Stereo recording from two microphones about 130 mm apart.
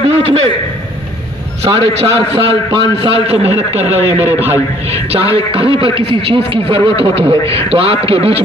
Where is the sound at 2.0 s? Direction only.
50° right (ahead or behind).